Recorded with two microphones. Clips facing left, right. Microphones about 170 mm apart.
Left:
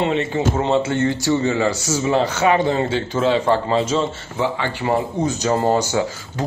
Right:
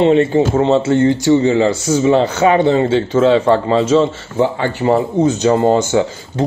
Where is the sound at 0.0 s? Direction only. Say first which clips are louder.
Right 8 dB; 35° right (ahead or behind).